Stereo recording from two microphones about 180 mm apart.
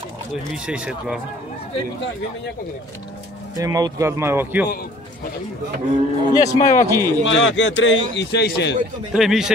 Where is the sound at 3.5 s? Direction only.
20° right (ahead or behind).